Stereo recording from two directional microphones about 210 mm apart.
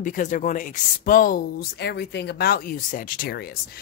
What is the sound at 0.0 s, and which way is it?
Speech, 40° left (ahead or behind).